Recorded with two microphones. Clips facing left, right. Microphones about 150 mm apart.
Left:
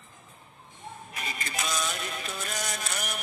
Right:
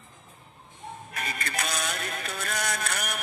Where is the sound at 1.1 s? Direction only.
60° right (ahead or behind).